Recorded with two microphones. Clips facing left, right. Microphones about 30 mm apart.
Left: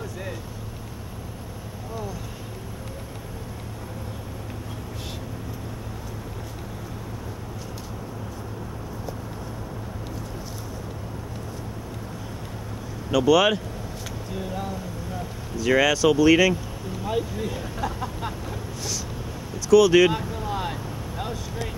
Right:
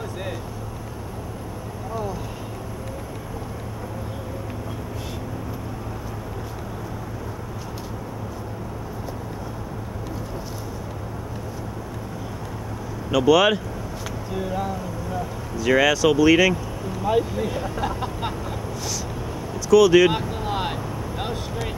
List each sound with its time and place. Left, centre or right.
13.1 s speech: centre
19.7 s speech: centre
20.1 s speech: right
20.4 s vehicle: right